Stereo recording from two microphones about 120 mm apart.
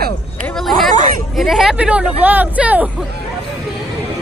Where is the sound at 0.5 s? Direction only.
Centre (ahead or behind).